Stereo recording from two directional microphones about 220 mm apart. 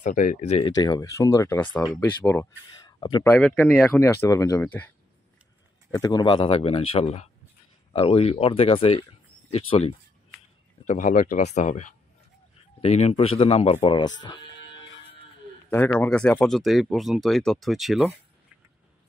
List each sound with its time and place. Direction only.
0.0 s speech: 35° left (ahead or behind)
0.7 s speech: 15° left (ahead or behind)
3.0 s speech: 20° left (ahead or behind)
3.3 s speech: 5° left (ahead or behind); by 9.9 s 25° left (ahead or behind)
10.9 s speech: 35° left (ahead or behind); by 14.4 s 20° left (ahead or behind)
15.7 s speech: 10° left (ahead or behind)